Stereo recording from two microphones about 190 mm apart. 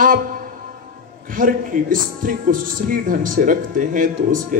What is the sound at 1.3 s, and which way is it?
A man's voice, 45° right (ahead or behind).